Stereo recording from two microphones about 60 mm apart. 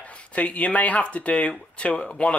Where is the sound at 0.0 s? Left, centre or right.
Left.